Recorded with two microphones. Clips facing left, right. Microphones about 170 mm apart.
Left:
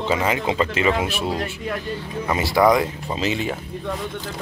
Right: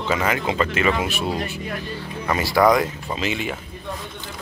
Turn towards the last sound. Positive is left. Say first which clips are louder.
# left 2 dB
turn(degrees=35)  # may be behind; listen again after turning